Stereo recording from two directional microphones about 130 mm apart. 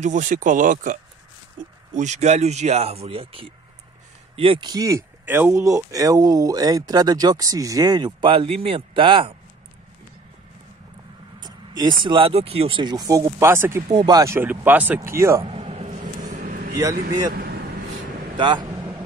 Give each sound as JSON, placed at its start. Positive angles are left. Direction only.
{"t": 0.0, "sound": "speech", "side_deg": -75}
{"t": 2.0, "sound": "speech", "side_deg": -65}
{"t": 5.2, "sound": "speech", "side_deg": -15}
{"t": 11.3, "sound": "speech", "side_deg": -35}
{"t": 12.9, "sound": "speech", "side_deg": -25}
{"t": 13.8, "sound": "speech", "side_deg": -30}
{"t": 15.4, "sound": "a sound", "side_deg": -50}
{"t": 16.0, "sound": "vehicle", "side_deg": -75}
{"t": 18.4, "sound": "speech", "side_deg": -35}